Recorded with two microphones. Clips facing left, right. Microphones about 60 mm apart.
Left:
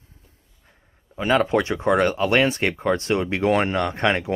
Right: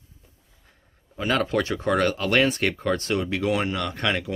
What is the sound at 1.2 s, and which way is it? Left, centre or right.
Speech, left.